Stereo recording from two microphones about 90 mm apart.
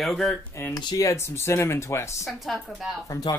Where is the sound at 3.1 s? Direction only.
45° left (ahead or behind).